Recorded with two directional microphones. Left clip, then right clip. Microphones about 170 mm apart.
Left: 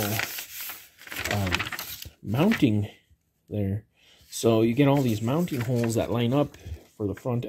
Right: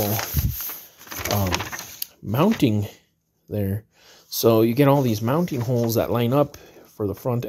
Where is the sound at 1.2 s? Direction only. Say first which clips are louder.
Right 3 dB; 40° right (ahead or behind).